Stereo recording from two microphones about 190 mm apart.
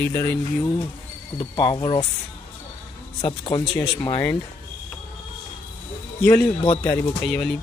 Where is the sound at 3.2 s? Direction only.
25° left (ahead or behind).